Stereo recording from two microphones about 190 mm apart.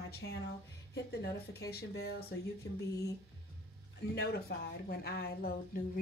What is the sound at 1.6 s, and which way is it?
Speech, 55° left (ahead or behind).